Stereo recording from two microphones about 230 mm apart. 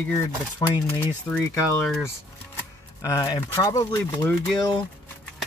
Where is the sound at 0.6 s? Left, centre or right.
Centre.